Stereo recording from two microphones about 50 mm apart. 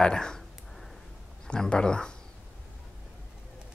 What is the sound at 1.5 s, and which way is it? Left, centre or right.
Speech, centre.